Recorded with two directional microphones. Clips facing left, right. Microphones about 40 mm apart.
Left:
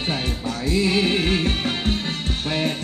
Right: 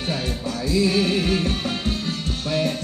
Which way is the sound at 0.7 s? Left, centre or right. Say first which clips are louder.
Even; left.